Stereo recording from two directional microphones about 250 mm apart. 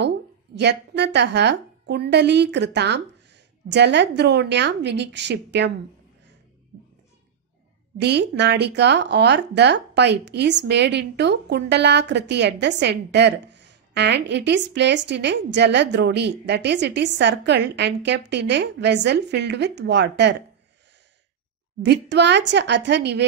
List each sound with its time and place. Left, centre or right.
0.6 s a woman's voice: right
8.0 s a woman's voice: right
21.8 s a woman's voice: right